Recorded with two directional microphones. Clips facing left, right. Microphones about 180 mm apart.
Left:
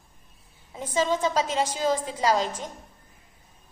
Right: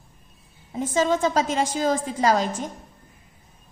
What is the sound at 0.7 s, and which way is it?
A woman's voice, 50° right (ahead or behind).